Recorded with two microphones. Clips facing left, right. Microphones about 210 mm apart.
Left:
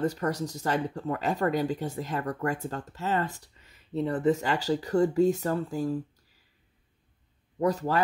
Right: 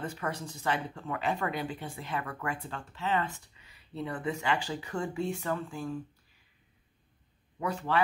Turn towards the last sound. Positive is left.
turn(degrees=40)  # may be behind; listen again after turning